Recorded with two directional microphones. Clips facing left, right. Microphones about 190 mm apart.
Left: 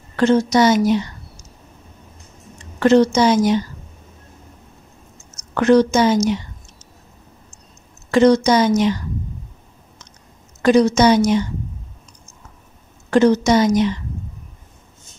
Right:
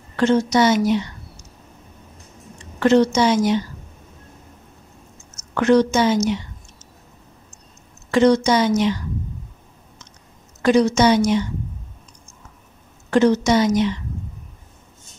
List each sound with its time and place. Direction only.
0.2 s a woman's voice: 40° left (ahead or behind)
2.8 s a woman's voice: 40° left (ahead or behind)
5.5 s a woman's voice: 40° left (ahead or behind)
8.1 s a woman's voice: 40° left (ahead or behind)
10.6 s a woman's voice: 40° left (ahead or behind)
13.1 s a woman's voice: 40° left (ahead or behind)